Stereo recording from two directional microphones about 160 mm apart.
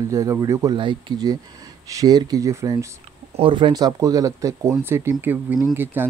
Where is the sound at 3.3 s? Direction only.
35° right (ahead or behind).